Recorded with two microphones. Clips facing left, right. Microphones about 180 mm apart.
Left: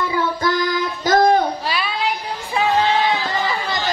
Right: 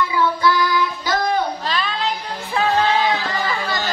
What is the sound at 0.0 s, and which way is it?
Child singing, 45° left (ahead or behind).